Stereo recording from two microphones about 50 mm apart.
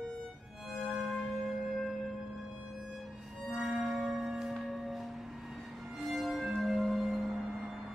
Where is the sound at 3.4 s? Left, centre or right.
Centre.